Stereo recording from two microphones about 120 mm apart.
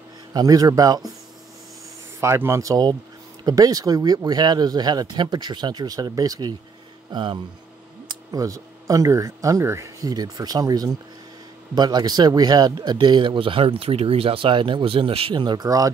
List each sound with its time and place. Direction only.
0.3 s speech: 30° right (ahead or behind)
2.1 s speech: 20° right (ahead or behind)